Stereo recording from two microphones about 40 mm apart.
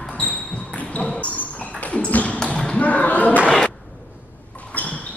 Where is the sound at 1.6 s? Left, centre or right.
Left.